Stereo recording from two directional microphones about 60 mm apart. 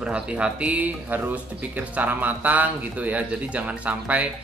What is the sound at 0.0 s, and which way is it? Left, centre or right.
Speech, centre.